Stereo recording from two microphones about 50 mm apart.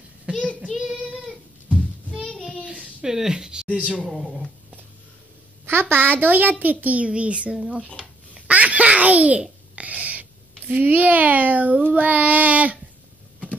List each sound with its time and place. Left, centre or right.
0.3 s child singing: right
0.7 s child singing: centre
1.7 s a sound: left
2.2 s child singing: centre
2.6 s a sound: centre
4.0 s speech: centre
5.7 s a child's voice: right
7.7 s speech: left
8.0 s babbling: right
9.8 s a sound: right
10.7 s a child's voice: right